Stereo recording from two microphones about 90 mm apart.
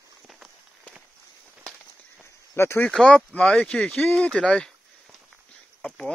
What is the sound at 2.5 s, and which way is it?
Speech, 30° left (ahead or behind).